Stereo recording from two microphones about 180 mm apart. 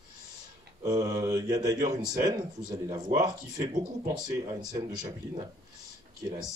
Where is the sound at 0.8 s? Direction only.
20° right (ahead or behind).